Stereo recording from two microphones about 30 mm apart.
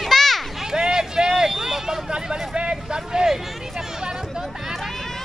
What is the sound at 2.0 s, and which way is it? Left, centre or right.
Speech, right.